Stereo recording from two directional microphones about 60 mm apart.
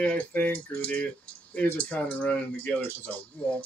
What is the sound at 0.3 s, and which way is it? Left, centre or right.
Speech, left.